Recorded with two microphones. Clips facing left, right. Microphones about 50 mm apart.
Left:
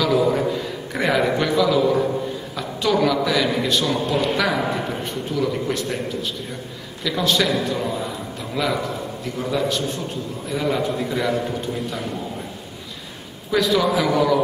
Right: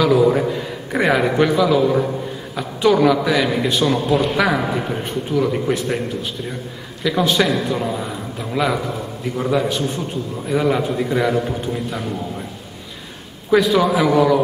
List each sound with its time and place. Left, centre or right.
0.0 s a man's voice: centre
4.4 s a man's voice: centre
7.0 s a man's voice: centre
13.5 s a man's voice: centre